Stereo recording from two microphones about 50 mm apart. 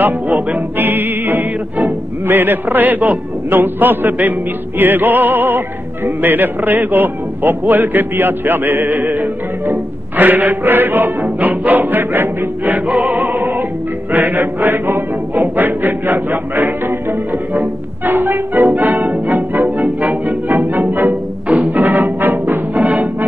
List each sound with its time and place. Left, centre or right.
0.0 s music: right
4.7 s speech: right
11.2 s music: right